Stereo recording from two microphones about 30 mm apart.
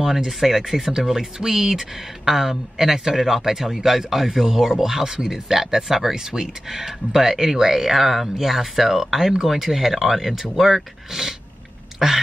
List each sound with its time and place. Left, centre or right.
0.0 s speech: centre